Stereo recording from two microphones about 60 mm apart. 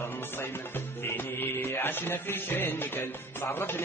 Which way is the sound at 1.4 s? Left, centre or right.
Left.